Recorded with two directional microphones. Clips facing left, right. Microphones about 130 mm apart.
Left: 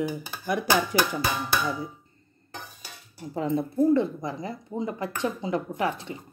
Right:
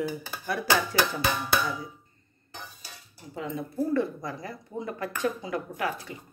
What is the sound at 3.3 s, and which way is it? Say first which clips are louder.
Speech: left 7 dB; 35° left (ahead or behind).